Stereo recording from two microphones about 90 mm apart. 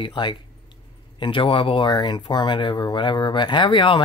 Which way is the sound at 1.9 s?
55° left (ahead or behind).